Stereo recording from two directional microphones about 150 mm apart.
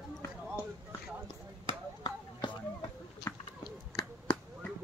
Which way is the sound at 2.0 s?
30° left (ahead or behind).